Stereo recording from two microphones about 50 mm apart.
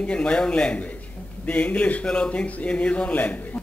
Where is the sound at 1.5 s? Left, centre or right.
Left.